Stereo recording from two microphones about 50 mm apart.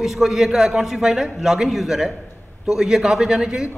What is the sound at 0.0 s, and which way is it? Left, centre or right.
A man's voice, centre.